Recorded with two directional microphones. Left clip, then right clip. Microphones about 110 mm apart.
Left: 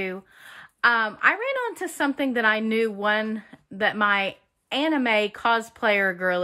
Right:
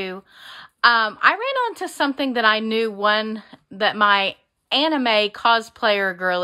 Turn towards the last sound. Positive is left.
turn(degrees=-30)  # may be behind; listen again after turning